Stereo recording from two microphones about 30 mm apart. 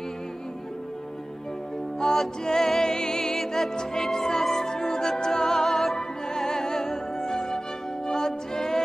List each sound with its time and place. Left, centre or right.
2.0 s music: centre